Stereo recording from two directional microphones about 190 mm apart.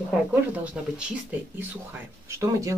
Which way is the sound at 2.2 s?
15° right (ahead or behind).